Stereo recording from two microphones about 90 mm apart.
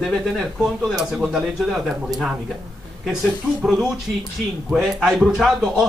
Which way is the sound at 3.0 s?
5° right (ahead or behind).